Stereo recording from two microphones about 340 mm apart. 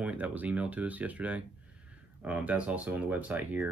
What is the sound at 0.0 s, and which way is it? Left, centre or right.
Speech, centre.